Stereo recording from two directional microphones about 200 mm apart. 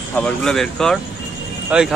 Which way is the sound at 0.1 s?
5° left (ahead or behind).